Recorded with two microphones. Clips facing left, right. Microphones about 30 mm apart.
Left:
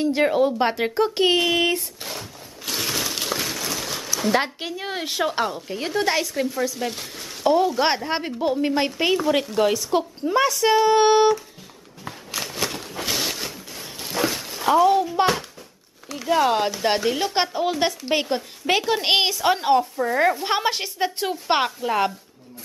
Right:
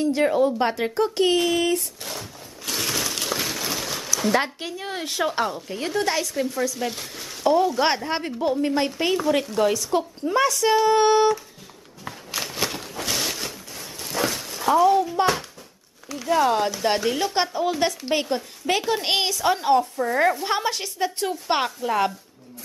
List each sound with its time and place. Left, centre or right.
0.0 s a woman's voice: centre
1.8 s a sound: centre
4.2 s speech: centre
12.0 s a sound: centre
16.1 s a woman's voice: centre
19.8 s speech: centre
20.4 s a woman's voice: left